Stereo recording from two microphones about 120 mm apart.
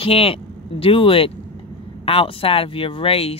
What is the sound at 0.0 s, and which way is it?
Speech, 50° left (ahead or behind).